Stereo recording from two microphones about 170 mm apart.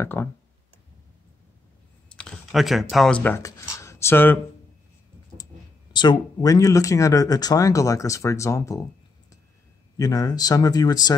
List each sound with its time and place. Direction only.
0.0 s speech: 15° left (ahead or behind)
2.0 s speech: 5° left (ahead or behind)
5.9 s speech: 25° left (ahead or behind)
9.9 s speech: 20° left (ahead or behind)